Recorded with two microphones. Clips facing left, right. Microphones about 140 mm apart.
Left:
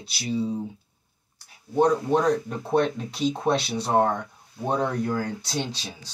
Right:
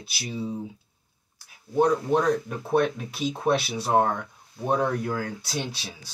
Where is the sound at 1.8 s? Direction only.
35° left (ahead or behind).